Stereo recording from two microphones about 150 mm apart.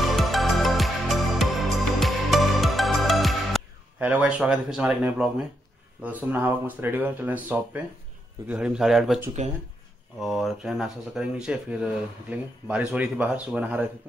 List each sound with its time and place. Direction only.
0.0 s music: centre (ahead or behind)
4.0 s speech: 10° right (ahead or behind)
9.4 s speech: 50° right (ahead or behind)
10.1 s speech: centre (ahead or behind)